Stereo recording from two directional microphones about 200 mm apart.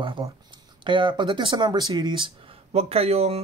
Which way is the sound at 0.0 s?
25° right (ahead or behind).